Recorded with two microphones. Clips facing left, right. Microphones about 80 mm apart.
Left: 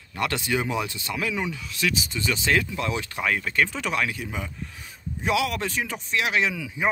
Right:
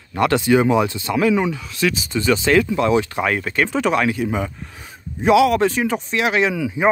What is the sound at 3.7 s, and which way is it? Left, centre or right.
Speech, right.